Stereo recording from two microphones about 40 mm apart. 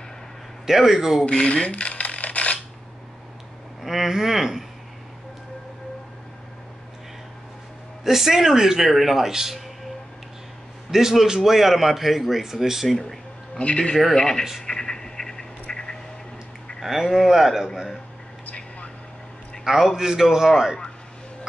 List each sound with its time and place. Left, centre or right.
0.7 s a man's voice: centre
1.2 s speech: centre
1.5 s a sound: left
3.8 s a man's voice: centre
8.0 s a man's voice: centre
10.9 s a man's voice: centre
13.6 s speech: left
14.1 s speech: centre
14.7 s a sound: centre
16.8 s a man's voice: centre
19.6 s a man's voice: centre